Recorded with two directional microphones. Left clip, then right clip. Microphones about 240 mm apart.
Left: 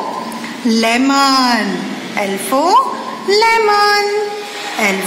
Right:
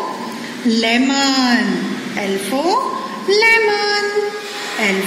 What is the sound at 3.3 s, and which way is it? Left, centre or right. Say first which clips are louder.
Speech: left 1 dB; centre.